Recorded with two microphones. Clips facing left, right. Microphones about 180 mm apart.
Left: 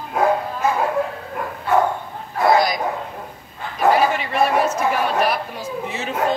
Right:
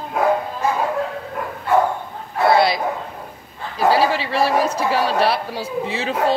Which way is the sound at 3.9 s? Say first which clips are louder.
Even; 30° right (ahead or behind).